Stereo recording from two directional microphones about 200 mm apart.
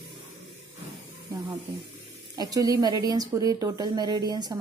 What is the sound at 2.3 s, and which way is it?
A woman's voice, 20° right (ahead or behind).